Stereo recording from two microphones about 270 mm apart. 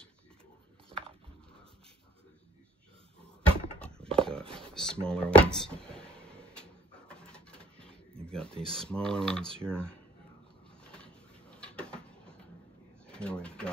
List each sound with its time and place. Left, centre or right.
0.8 s a sound: right
3.8 s clip-clop: centre
4.6 s speech: centre
6.5 s printer: centre
8.3 s speech: centre
10.8 s a sound: centre
13.0 s speech: centre